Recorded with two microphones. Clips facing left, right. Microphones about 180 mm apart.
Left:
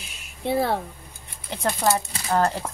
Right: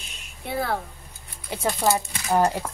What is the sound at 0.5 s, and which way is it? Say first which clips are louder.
Speech: left 4 dB; 25° left (ahead or behind).